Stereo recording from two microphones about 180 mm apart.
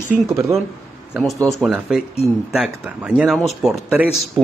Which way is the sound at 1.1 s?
Centre (ahead or behind).